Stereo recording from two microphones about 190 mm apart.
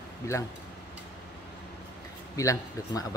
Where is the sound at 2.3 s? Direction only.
15° left (ahead or behind).